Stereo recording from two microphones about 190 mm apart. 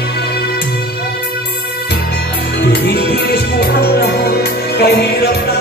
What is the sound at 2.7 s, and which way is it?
Music, 60° left (ahead or behind).